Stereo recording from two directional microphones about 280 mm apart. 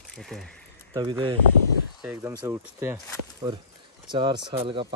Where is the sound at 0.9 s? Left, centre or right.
Centre.